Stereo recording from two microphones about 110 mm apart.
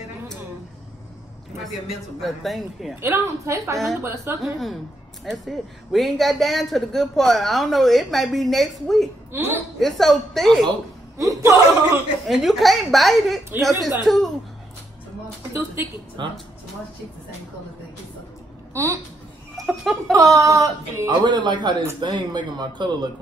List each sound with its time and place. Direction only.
2.2 s speech: centre (ahead or behind)
3.0 s speech: 20° right (ahead or behind)
3.7 s speech: centre (ahead or behind)
9.3 s speech: 20° right (ahead or behind)
9.8 s speech: centre (ahead or behind)
11.1 s speech: 30° right (ahead or behind)
12.3 s speech: centre (ahead or behind)
15.5 s speech: 20° right (ahead or behind)
18.7 s speech: 25° right (ahead or behind)
19.6 s a sound: centre (ahead or behind)
20.1 s speech: 30° right (ahead or behind)
21.1 s speech: 45° right (ahead or behind)